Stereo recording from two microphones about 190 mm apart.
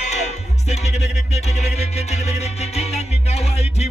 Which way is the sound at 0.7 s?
35° left (ahead or behind).